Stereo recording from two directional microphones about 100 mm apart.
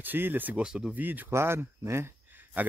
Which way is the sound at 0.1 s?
20° right (ahead or behind).